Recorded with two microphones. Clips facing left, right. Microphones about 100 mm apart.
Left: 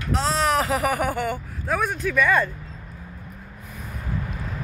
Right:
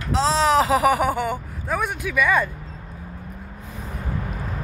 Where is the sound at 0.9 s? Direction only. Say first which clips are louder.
Right 2 dB; 15° right (ahead or behind).